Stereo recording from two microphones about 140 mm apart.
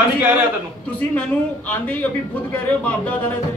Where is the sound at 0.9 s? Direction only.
10° left (ahead or behind).